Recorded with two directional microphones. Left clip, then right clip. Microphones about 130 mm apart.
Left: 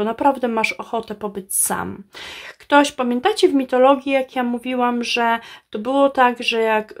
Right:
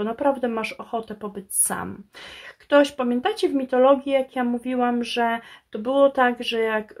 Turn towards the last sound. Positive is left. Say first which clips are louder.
# left 5 dB
turn(degrees=25)  # may be behind; listen again after turning